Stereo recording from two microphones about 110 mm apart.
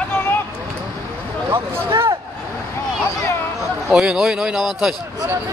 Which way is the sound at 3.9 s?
5° right (ahead or behind).